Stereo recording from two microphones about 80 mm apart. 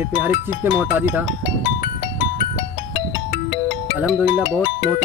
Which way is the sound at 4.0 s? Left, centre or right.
Centre.